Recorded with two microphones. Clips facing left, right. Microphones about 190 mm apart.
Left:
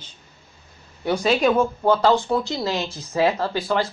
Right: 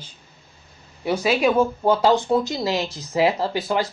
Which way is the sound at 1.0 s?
5° right (ahead or behind).